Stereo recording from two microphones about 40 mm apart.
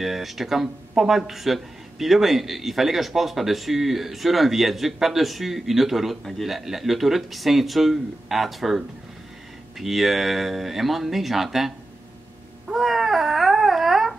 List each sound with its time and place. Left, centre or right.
0.0 s speech: centre
12.6 s babbling: centre